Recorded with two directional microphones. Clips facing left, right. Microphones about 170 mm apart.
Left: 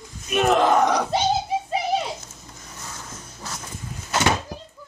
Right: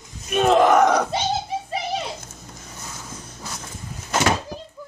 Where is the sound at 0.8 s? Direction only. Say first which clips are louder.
Right 3 dB; 50° right (ahead or behind).